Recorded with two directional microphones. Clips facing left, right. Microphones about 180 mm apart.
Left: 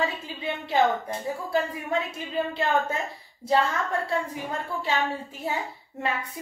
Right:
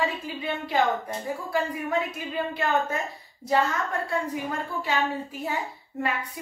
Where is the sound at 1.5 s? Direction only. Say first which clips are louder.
Even; 25° left (ahead or behind).